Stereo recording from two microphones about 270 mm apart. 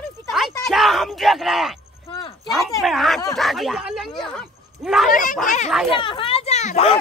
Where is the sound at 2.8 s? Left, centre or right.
Centre.